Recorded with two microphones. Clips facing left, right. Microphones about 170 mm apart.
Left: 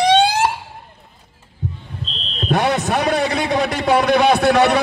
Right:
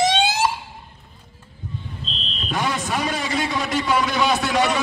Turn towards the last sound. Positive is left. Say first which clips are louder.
# left 7 dB
turn(degrees=65)  # may be behind; listen again after turning